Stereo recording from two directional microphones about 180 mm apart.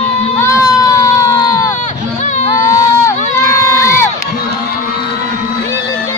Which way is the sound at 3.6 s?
15° left (ahead or behind).